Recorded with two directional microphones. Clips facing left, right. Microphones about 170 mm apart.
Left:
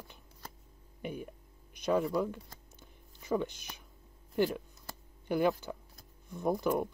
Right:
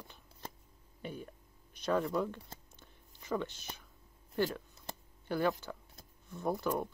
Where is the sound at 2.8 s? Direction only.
10° left (ahead or behind).